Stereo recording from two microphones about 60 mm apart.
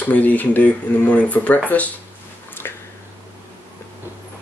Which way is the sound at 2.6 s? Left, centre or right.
Left.